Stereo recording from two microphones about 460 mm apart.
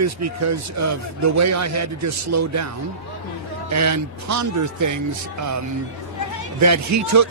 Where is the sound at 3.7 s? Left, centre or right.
Right.